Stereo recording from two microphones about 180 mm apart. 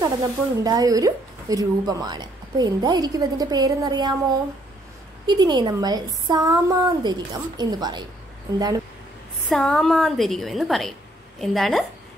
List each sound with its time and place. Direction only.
0.0 s speech: 20° right (ahead or behind)
5.2 s speech: 25° right (ahead or behind)
9.5 s a woman's voice: 5° left (ahead or behind)